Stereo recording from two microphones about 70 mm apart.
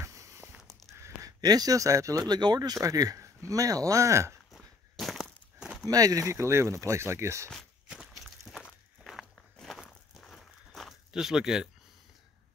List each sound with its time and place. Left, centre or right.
0.0 s walk: right
0.5 s a sound: centre
1.2 s speech: right
2.2 s speech: right
2.8 s speech: right
4.5 s a sound: centre
5.9 s speech: right
6.3 s speech: right
8.1 s walk: centre